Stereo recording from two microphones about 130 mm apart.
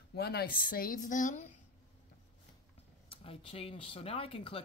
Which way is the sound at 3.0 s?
45° left (ahead or behind).